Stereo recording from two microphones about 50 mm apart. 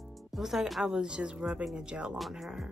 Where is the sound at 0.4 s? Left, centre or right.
Centre.